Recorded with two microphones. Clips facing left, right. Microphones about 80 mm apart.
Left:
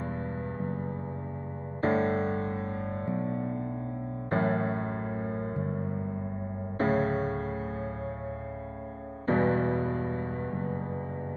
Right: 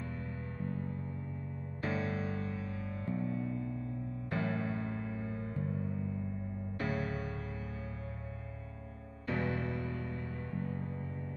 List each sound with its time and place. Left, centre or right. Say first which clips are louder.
0.6 s music: left 6 dB; left
9.2 s music: left 10 dB; left